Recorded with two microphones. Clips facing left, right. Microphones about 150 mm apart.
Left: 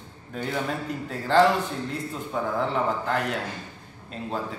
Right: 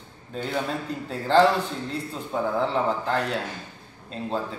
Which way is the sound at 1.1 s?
30° right (ahead or behind).